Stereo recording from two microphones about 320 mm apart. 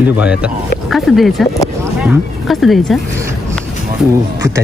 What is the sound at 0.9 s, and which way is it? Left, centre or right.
Speech, centre.